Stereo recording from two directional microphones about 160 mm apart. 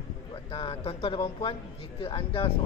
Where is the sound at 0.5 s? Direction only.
35° left (ahead or behind).